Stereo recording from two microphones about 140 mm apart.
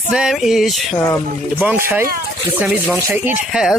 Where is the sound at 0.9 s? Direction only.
20° left (ahead or behind).